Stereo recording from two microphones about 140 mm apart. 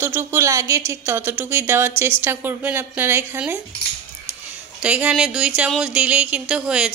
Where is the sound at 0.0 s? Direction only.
15° right (ahead or behind).